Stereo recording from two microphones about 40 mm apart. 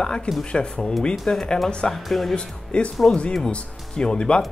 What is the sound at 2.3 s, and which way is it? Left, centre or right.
Speech, left.